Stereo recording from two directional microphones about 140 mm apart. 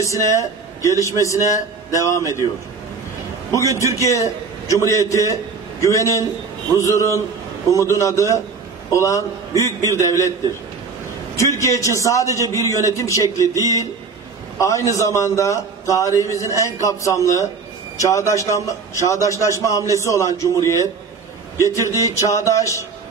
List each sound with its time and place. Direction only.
0.0 s a man's voice: 20° left (ahead or behind)
4.7 s a man's voice: 25° left (ahead or behind)
11.3 s a man's voice: 20° left (ahead or behind)